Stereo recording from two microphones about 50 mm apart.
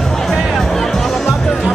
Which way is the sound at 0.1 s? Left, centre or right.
Centre.